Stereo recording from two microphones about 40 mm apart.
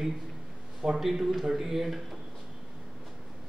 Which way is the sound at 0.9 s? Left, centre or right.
Centre.